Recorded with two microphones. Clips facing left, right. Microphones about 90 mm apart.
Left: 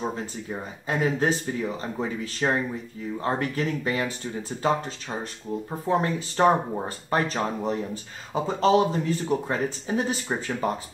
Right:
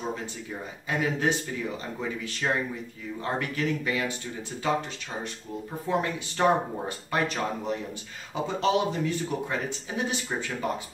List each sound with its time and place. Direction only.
0.0 s speech: 35° left (ahead or behind)
5.9 s speech: 35° left (ahead or behind)